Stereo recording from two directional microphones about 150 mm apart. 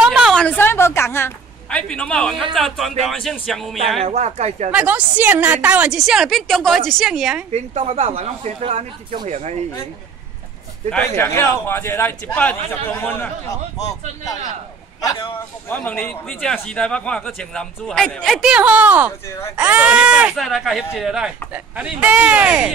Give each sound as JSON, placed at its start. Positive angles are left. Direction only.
{"t": 0.0, "sound": "a sound", "side_deg": -5}
{"t": 0.3, "sound": "a sound", "side_deg": 10}
{"t": 2.5, "sound": "a man's voice", "side_deg": 0}
{"t": 4.0, "sound": "speech", "side_deg": -45}
{"t": 4.6, "sound": "a man's voice", "side_deg": -10}
{"t": 7.5, "sound": "speech", "side_deg": -40}
{"t": 10.9, "sound": "a man's voice", "side_deg": 5}
{"t": 15.7, "sound": "a man's voice", "side_deg": 10}
{"t": 18.5, "sound": "a man's voice", "side_deg": -10}